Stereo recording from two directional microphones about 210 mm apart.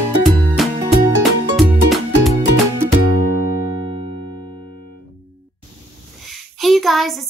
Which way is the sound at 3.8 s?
25° right (ahead or behind).